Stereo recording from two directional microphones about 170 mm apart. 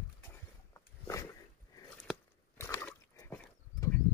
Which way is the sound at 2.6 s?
15° left (ahead or behind).